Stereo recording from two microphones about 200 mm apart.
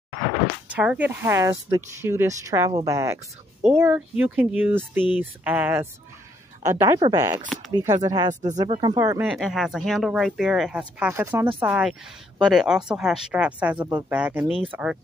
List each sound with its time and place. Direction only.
0.7 s speech: 5° right (ahead or behind)
8.3 s speech: 35° right (ahead or behind)
8.6 s speech: 25° right (ahead or behind)
9.3 s speech: centre (ahead or behind)